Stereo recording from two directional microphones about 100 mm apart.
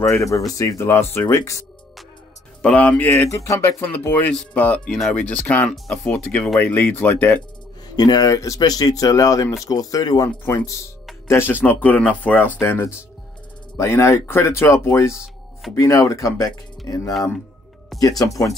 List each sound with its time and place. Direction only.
0.0 s speech: 30° left (ahead or behind)
2.6 s speech: 10° left (ahead or behind)
7.9 s speech: 45° left (ahead or behind); by 14.5 s 25° left (ahead or behind)
15.7 s speech: 30° left (ahead or behind)